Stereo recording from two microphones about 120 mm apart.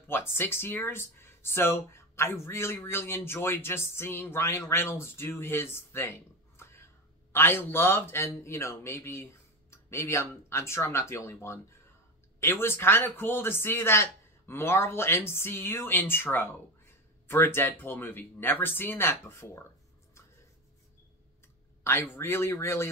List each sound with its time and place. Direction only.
0.0 s speech: 20° left (ahead or behind)
21.8 s speech: 20° left (ahead or behind)